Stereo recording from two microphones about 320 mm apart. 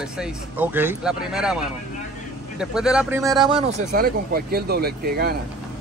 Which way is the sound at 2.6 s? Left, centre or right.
Centre.